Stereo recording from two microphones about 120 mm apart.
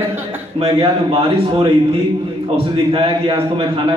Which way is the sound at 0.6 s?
50° right (ahead or behind).